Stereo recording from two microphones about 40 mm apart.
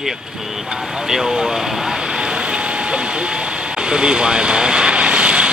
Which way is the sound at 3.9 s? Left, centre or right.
Right.